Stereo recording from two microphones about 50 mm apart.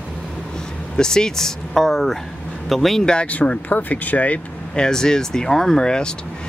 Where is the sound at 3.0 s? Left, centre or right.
Left.